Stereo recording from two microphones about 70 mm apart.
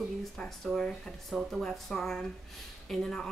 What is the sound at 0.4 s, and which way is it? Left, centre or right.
A woman's voice, centre.